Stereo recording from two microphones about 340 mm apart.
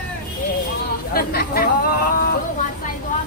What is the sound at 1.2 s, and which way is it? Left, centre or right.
Speech, left.